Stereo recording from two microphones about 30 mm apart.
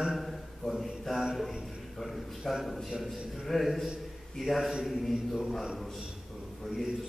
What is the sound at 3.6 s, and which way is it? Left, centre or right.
A man's voice, centre.